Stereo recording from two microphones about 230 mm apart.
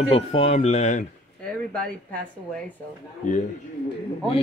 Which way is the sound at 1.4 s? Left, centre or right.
Centre.